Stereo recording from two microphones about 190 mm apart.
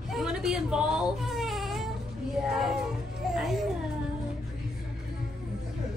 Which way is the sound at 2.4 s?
Centre (ahead or behind).